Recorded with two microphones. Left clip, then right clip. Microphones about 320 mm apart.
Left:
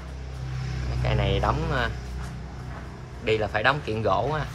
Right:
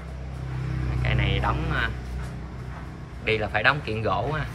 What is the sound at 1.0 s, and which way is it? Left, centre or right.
Vehicle, centre.